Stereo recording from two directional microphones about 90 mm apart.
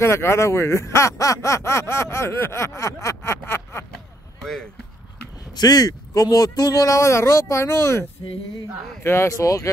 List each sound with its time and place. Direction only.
0.0 s speech: 30° left (ahead or behind)
3.9 s a sound: 5° left (ahead or behind)
5.5 s speech: 45° left (ahead or behind); by 8.0 s 30° left (ahead or behind)
9.0 s speech: 30° left (ahead or behind)